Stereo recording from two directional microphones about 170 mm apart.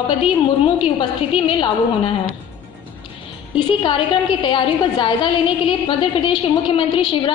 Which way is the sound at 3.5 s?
30° left (ahead or behind).